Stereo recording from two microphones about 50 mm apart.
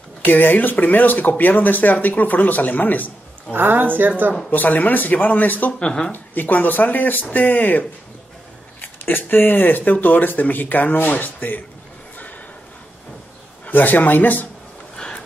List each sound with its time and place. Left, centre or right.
0.2 s speech: left
3.5 s a woman's voice: right
4.5 s speech: left
5.8 s speech: centre
6.1 s speech: left
9.0 s speech: left
13.7 s speech: left